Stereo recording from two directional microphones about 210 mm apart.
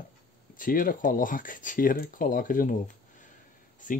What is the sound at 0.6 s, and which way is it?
Speech, 40° left (ahead or behind).